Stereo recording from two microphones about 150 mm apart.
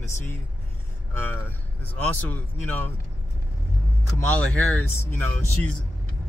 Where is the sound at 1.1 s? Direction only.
15° left (ahead or behind).